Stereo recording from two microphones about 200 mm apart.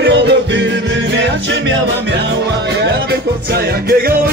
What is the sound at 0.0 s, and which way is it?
Music, 60° right (ahead or behind).